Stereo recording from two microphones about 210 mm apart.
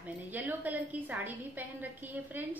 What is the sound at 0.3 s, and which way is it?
A woman's voice, 10° right (ahead or behind).